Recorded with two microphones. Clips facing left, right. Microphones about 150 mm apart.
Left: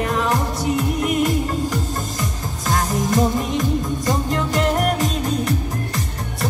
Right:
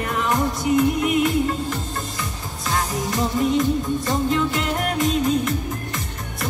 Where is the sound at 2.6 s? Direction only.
45° left (ahead or behind).